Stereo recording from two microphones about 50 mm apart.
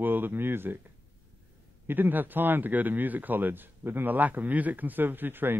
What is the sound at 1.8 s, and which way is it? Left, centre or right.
A man's voice, right.